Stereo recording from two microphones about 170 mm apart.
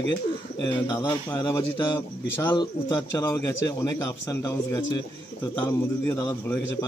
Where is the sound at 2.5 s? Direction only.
25° left (ahead or behind).